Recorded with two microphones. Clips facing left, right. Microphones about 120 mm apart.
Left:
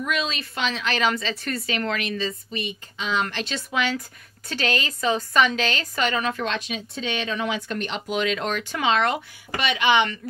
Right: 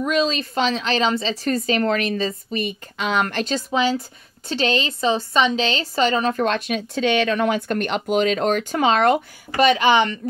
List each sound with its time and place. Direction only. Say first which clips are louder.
0.0 s a woman's voice: right 7 dB; 35° right (ahead or behind)
3.0 s a woman's voice: right 5 dB; 55° right (ahead or behind); by 10.1 s 40° right (ahead or behind)